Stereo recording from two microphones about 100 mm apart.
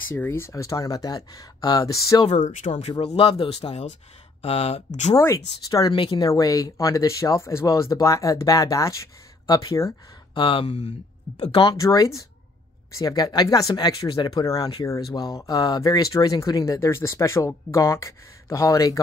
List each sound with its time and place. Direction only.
0.1 s speech: 25° left (ahead or behind); by 2.2 s 40° left (ahead or behind)
2.9 s speech: 65° left (ahead or behind); by 4.8 s 85° left
5.2 s speech: 35° left (ahead or behind)
5.9 s speech: 55° left (ahead or behind)
6.2 s speech: 35° left (ahead or behind)
10.3 s speech: 60° left (ahead or behind)
11.4 s speech: 50° left (ahead or behind)
11.8 s speech: 35° left (ahead or behind)
14.4 s speech: 35° left (ahead or behind)